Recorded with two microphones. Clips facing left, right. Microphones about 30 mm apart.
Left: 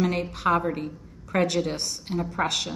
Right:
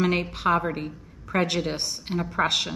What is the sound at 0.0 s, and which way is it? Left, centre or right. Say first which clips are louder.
A woman's voice: right 1 dB; right.